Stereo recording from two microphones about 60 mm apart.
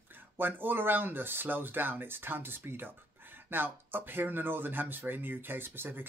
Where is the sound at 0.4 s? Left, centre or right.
Right.